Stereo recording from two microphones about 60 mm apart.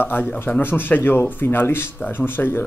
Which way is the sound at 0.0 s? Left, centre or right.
Left.